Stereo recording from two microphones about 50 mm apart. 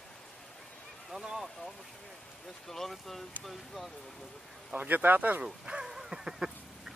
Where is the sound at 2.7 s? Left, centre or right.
Centre.